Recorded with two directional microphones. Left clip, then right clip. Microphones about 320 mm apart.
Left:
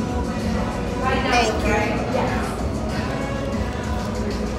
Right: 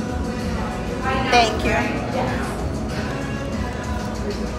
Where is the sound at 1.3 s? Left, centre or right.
Right.